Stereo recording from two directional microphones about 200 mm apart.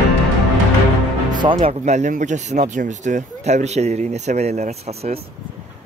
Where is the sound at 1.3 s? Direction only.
25° right (ahead or behind).